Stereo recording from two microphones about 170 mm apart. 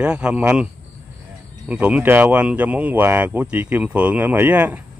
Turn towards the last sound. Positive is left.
turn(degrees=-10)  # may be behind; listen again after turning